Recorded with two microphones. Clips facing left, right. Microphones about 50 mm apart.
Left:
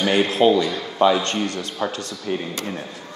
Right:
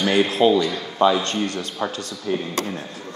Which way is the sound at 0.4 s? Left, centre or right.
Left.